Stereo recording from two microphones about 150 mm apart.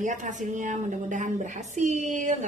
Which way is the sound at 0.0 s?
55° right (ahead or behind).